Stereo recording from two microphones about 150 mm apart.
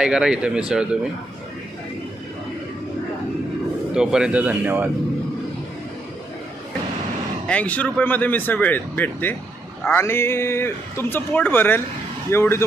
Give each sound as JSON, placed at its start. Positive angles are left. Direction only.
{"t": 0.0, "sound": "speech", "side_deg": -5}
{"t": 3.9, "sound": "speech", "side_deg": -5}
{"t": 7.4, "sound": "speech", "side_deg": 10}